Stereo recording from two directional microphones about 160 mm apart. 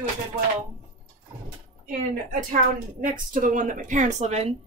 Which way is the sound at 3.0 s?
55° right (ahead or behind).